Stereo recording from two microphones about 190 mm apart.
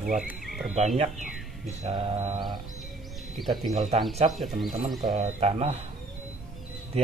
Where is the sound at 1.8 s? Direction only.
30° right (ahead or behind).